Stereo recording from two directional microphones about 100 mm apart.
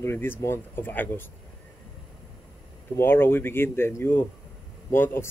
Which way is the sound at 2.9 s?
20° left (ahead or behind).